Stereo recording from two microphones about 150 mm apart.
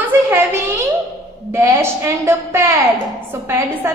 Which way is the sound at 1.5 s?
20° right (ahead or behind).